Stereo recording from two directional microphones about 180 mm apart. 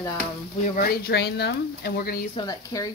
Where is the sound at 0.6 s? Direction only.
55° left (ahead or behind).